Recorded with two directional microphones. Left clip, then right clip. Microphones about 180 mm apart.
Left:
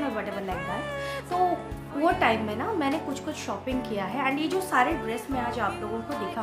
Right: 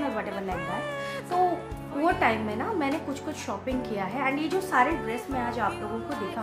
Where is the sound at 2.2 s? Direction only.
15° left (ahead or behind).